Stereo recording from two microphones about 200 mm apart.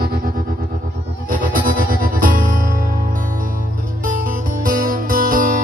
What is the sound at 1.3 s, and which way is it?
Music, 45° right (ahead or behind).